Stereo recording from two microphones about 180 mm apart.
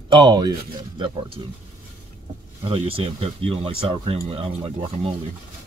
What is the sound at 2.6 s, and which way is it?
Speech, 30° right (ahead or behind).